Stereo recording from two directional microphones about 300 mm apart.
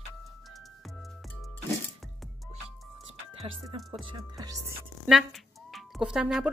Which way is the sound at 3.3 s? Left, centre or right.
Centre.